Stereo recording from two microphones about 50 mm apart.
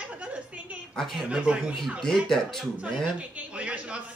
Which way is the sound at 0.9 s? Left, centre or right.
Centre.